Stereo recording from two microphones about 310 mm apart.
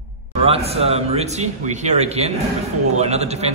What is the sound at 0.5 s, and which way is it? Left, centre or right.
A man's voice, centre.